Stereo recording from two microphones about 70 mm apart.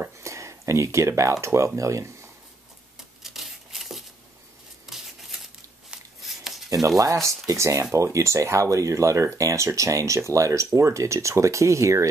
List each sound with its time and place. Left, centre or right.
0.2 s speech: right
3.0 s a sound: centre
7.2 s speech: right